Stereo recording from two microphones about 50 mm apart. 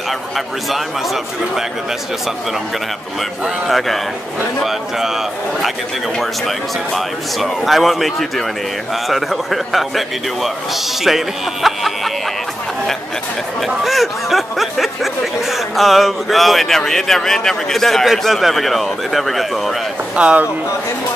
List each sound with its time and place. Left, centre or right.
0.7 s speech: centre
3.2 s a man's voice: centre
6.1 s speech: centre
13.8 s speech: centre
20.2 s speech: right